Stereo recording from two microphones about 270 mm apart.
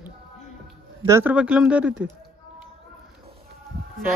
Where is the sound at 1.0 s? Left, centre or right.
Centre.